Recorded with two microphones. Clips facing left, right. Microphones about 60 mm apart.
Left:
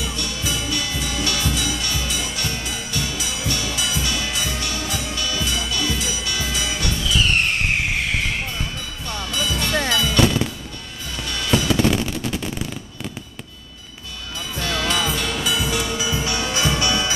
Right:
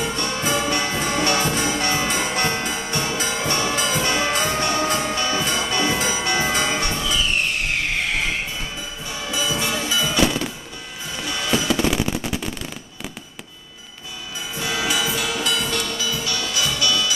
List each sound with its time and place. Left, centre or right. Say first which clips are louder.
0.0 s music: right 4 dB; right
7.2 s music: left 5 dB; left
9.1 s music: even; centre
11.8 s machine gun: left 1 dB; centre
14.6 s music: left 1 dB; centre
16.1 s music: left 3 dB; left